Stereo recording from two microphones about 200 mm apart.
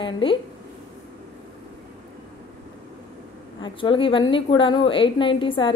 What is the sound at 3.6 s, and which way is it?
A woman's voice, 25° left (ahead or behind).